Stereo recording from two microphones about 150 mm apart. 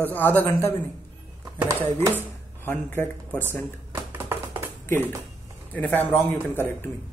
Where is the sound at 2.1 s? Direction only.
15° left (ahead or behind).